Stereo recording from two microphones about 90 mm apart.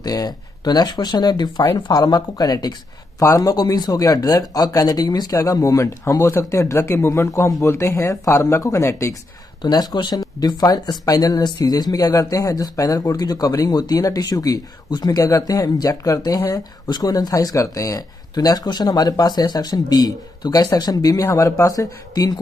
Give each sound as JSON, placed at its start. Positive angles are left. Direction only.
{"t": 0.0, "sound": "speech", "side_deg": 45}
{"t": 3.2, "sound": "speech", "side_deg": 35}
{"t": 9.6, "sound": "speech", "side_deg": 50}